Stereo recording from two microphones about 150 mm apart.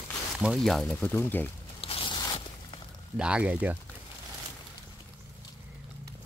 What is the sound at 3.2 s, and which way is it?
Speech, 5° right (ahead or behind).